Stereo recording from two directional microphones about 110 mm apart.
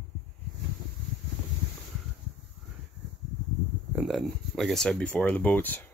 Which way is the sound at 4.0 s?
5° right (ahead or behind).